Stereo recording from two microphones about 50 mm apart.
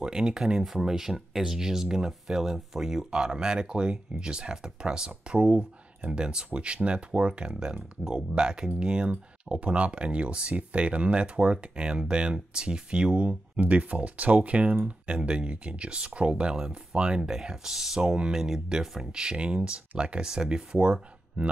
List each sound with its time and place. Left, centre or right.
0.0 s speech: centre
13.6 s speech: right